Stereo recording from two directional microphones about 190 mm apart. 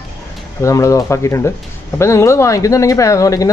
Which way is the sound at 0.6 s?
15° left (ahead or behind).